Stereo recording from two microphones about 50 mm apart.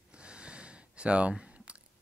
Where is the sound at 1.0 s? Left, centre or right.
Right.